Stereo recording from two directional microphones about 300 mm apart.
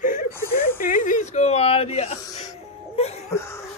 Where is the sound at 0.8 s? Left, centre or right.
Left.